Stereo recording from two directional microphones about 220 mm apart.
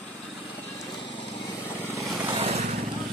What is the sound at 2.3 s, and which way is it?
Vehicle, 30° right (ahead or behind).